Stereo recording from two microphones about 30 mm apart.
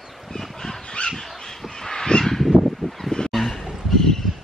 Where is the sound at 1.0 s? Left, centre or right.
Left.